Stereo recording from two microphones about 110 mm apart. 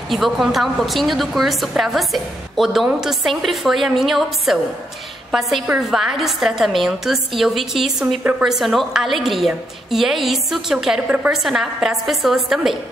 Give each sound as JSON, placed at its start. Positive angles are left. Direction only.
{"t": 0.1, "sound": "a woman's voice", "side_deg": 0}
{"t": 8.2, "sound": "a woman's voice", "side_deg": -15}
{"t": 8.5, "sound": "a woman's voice", "side_deg": 0}